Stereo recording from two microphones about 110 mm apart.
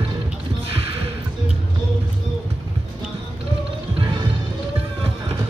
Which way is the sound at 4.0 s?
45° right (ahead or behind).